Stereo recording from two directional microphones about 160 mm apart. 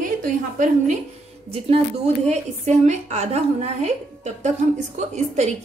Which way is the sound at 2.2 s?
45° right (ahead or behind).